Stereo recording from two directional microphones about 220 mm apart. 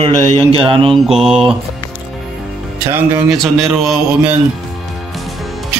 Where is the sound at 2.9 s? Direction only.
10° right (ahead or behind).